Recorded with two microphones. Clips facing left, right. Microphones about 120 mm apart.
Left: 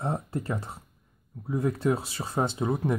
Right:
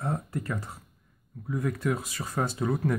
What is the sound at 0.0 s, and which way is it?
Speech, 25° left (ahead or behind).